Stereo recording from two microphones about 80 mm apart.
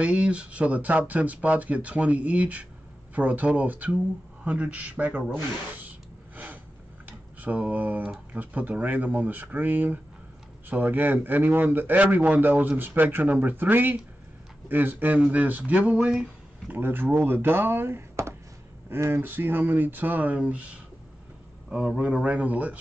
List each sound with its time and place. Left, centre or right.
0.0 s a man's voice: centre
6.3 s a sound: right
8.3 s a man's voice: right